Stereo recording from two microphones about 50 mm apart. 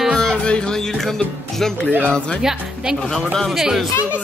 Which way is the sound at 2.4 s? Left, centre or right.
Centre.